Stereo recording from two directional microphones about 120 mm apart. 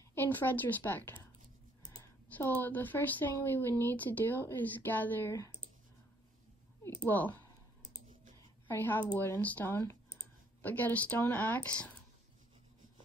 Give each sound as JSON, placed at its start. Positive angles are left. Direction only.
{"t": 0.1, "sound": "a woman's voice", "side_deg": 15}
{"t": 2.3, "sound": "a woman's voice", "side_deg": 15}
{"t": 7.1, "sound": "speech", "side_deg": 15}
{"t": 8.6, "sound": "a woman's voice", "side_deg": 15}